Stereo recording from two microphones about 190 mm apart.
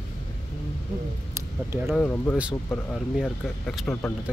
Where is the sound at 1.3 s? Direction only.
15° right (ahead or behind).